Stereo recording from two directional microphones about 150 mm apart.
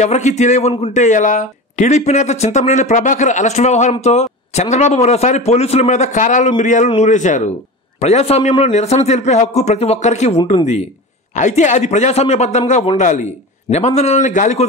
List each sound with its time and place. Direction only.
0.0 s a man's voice: 50° left (ahead or behind)